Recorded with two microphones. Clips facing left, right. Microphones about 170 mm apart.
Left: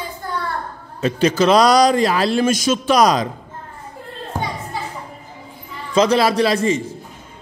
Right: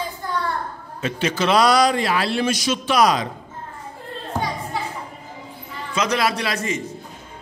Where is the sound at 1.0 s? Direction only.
40° left (ahead or behind).